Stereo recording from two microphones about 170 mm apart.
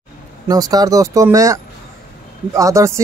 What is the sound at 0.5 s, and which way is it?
Speech, 20° right (ahead or behind).